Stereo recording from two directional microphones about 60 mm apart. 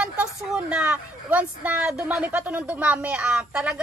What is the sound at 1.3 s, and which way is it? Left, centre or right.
Speech, right.